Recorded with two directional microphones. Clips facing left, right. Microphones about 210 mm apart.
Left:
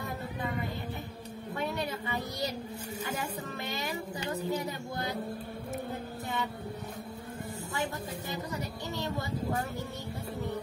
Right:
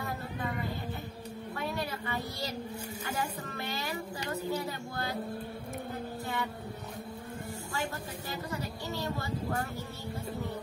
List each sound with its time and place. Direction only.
1.6 s a sound: 20° left (ahead or behind)
3.1 s speech: 20° left (ahead or behind)
9.0 s speech: 20° left (ahead or behind)